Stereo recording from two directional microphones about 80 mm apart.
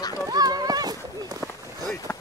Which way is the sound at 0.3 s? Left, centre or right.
Right.